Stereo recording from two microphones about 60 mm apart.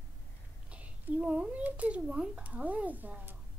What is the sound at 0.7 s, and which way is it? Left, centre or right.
Speech, right.